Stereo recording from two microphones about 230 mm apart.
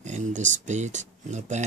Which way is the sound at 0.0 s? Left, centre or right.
Right.